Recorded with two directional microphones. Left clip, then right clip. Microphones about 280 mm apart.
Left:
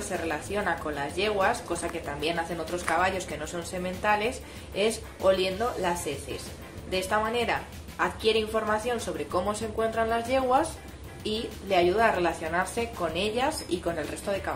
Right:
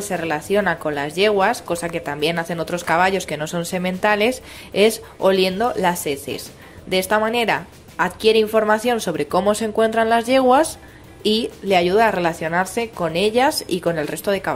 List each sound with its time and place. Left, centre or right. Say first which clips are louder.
0.3 s a woman's voice: right 11 dB; right